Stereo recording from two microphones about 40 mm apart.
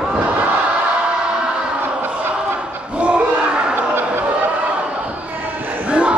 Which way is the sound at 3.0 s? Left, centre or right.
Right.